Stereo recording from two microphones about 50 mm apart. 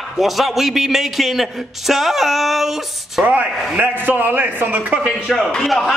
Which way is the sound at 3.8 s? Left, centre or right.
Right.